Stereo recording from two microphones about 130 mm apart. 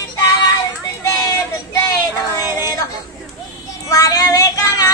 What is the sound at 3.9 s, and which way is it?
Child singing, 30° left (ahead or behind).